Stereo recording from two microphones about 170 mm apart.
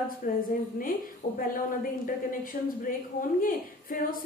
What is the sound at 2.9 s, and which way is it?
A woman's voice, 55° left (ahead or behind).